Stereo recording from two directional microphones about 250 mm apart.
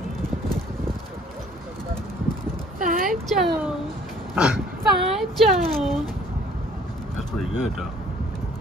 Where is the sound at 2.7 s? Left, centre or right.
Right.